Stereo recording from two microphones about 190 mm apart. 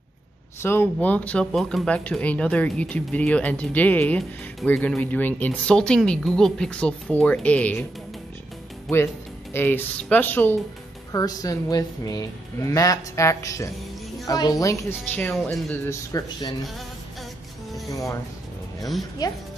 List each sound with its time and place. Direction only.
0.6 s speech: 10° left (ahead or behind)
8.9 s speech: 10° left (ahead or behind)
17.8 s music: 15° left (ahead or behind)
19.2 s speech: 20° left (ahead or behind)